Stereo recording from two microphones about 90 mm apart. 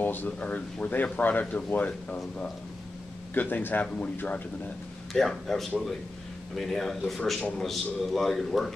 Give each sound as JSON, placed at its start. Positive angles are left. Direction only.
{"t": 0.0, "sound": "speech", "side_deg": 20}
{"t": 3.3, "sound": "speech", "side_deg": 20}
{"t": 5.1, "sound": "speech", "side_deg": 5}